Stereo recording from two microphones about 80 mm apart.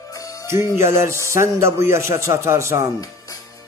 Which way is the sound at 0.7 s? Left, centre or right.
Right.